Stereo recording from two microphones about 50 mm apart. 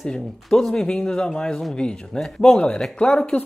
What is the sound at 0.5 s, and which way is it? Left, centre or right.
A man's voice, centre.